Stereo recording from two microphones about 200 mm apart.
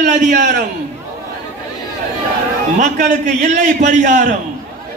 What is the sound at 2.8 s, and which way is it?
A man's voice, 40° right (ahead or behind).